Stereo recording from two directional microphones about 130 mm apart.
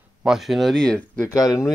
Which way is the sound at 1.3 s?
25° left (ahead or behind).